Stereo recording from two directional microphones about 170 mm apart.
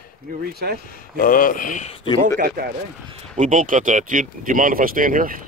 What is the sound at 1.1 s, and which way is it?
Speech, 55° left (ahead or behind).